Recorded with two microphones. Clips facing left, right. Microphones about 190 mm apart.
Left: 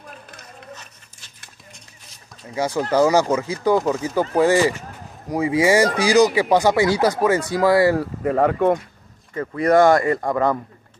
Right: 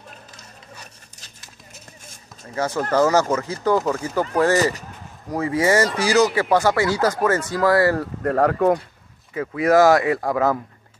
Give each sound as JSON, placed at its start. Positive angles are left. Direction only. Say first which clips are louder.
{"t": 2.5, "sound": "speech", "louder": "left 1 dB", "side_deg": 15}
{"t": 5.3, "sound": "speech", "louder": "left 2 dB", "side_deg": 15}
{"t": 8.0, "sound": "speech", "louder": "left 1 dB", "side_deg": 5}